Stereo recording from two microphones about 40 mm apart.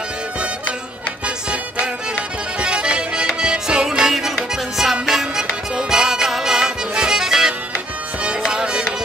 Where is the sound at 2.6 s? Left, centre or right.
Right.